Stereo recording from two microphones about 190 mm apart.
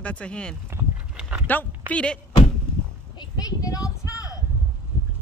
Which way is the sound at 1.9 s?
5° left (ahead or behind).